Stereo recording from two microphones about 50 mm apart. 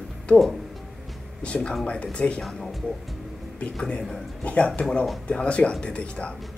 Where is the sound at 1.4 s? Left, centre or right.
Left.